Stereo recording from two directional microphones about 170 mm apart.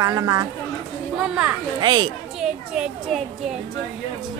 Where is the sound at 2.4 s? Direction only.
5° right (ahead or behind).